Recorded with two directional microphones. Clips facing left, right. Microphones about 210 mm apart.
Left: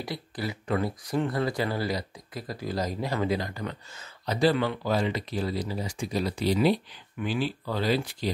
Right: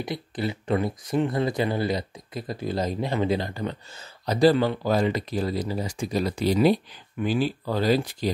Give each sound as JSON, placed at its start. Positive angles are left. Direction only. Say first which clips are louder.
{"t": 0.0, "sound": "speech", "louder": "right 4 dB", "side_deg": -20}